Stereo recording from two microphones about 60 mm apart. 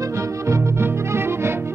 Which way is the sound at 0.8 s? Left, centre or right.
Right.